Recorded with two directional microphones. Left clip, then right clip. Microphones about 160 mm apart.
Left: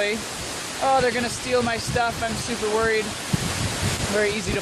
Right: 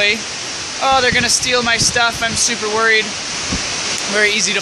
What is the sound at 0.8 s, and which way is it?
Speech, 15° right (ahead or behind).